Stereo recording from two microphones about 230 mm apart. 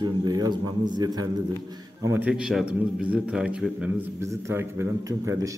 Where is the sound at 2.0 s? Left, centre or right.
Centre.